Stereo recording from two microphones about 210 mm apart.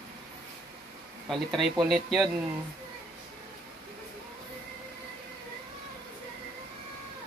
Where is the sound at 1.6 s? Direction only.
Centre (ahead or behind).